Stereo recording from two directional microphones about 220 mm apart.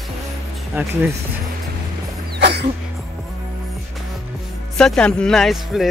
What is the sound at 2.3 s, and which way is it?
Dog, 50° right (ahead or behind).